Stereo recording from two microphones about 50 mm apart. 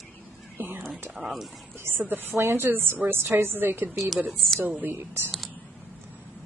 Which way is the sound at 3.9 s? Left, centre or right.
Centre.